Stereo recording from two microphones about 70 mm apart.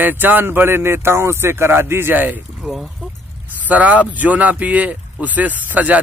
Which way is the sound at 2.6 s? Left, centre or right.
Centre.